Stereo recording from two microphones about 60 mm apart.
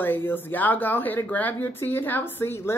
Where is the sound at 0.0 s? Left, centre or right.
Left.